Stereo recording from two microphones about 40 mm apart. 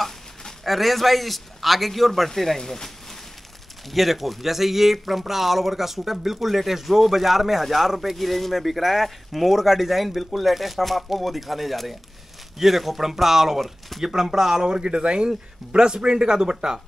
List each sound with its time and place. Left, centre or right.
0.7 s speech: centre
3.9 s speech: centre